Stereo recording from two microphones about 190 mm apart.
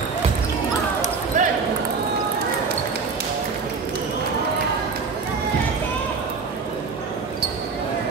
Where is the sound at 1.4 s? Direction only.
40° right (ahead or behind).